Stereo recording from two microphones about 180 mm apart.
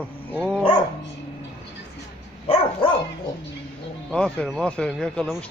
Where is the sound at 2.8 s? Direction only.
30° left (ahead or behind).